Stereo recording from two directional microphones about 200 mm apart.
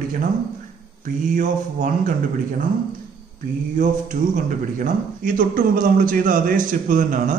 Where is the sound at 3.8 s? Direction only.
40° right (ahead or behind).